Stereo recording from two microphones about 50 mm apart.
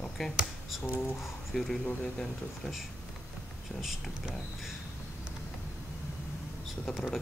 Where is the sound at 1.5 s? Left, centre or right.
Centre.